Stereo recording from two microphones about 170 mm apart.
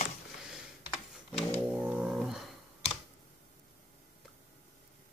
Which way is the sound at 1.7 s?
5° right (ahead or behind).